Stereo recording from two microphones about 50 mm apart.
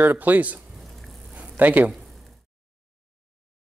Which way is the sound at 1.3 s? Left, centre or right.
Right.